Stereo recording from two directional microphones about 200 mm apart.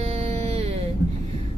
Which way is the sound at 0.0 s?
30° right (ahead or behind).